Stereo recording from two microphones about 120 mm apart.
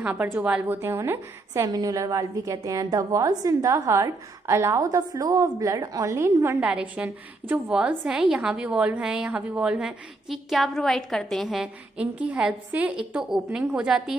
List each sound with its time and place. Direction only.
0.0 s a woman's voice: 15° right (ahead or behind)
6.6 s a woman's voice: 10° right (ahead or behind)